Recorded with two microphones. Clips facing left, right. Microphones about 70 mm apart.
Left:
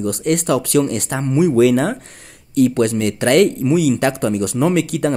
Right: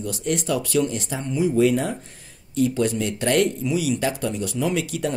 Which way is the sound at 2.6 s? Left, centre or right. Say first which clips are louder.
Left 6 dB; left.